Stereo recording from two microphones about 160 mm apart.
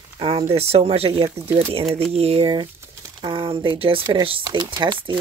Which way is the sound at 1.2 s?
15° right (ahead or behind).